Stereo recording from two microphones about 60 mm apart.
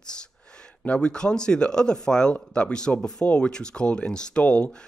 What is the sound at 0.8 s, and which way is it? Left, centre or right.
Speech, centre.